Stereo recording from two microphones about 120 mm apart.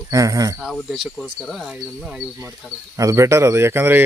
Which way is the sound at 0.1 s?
30° right (ahead or behind).